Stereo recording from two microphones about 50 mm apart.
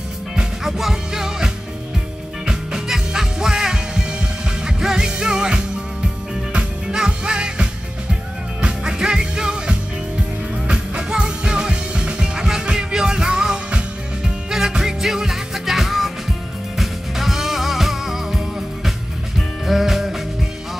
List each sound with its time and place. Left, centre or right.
0.4 s music: centre
6.9 s music: centre
19.6 s music: centre